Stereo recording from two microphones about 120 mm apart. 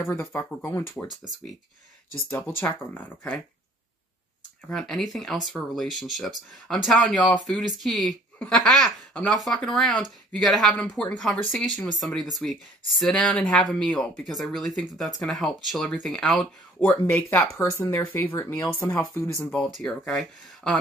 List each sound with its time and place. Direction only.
0.0 s speech: 20° left (ahead or behind)
2.2 s speech: 20° left (ahead or behind)
4.6 s speech: 5° left (ahead or behind)
16.8 s speech: 15° left (ahead or behind)
19.6 s speech: 5° left (ahead or behind)